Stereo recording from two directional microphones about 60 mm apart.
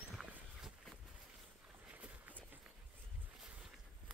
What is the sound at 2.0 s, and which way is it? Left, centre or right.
Run, right.